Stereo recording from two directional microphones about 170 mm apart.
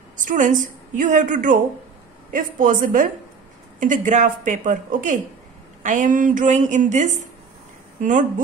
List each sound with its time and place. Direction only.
0.2 s a woman's voice: 50° right (ahead or behind)